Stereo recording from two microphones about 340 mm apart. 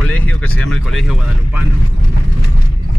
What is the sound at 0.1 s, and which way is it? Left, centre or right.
Speech, centre.